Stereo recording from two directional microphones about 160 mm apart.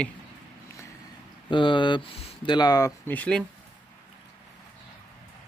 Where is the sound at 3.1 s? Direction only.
10° left (ahead or behind).